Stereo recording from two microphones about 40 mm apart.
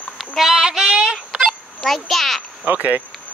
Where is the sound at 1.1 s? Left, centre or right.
Right.